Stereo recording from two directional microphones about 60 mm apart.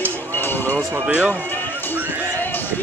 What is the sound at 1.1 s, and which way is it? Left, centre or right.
Speech, centre.